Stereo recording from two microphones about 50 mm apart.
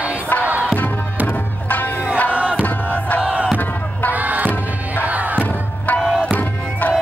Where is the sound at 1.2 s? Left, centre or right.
Left.